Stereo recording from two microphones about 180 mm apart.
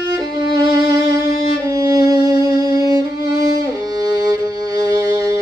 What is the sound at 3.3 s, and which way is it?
Violin, 60° left (ahead or behind).